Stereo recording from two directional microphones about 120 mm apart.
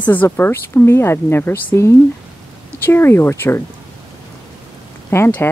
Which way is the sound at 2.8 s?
20° left (ahead or behind).